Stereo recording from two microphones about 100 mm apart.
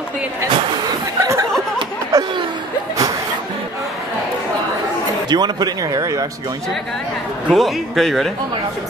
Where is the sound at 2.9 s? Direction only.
35° right (ahead or behind).